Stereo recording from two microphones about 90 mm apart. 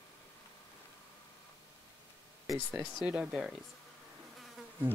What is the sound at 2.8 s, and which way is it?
Speech, 5° left (ahead or behind).